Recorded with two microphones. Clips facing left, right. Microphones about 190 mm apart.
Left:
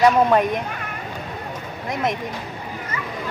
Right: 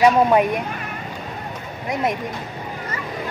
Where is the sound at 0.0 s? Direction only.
10° right (ahead or behind).